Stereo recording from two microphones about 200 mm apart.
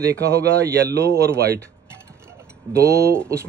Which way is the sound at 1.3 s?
50° right (ahead or behind).